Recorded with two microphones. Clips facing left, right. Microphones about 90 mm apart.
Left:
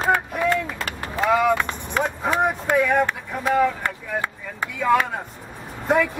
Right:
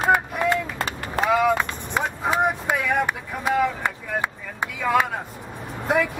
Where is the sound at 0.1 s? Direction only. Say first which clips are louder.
Even; 10° right (ahead or behind).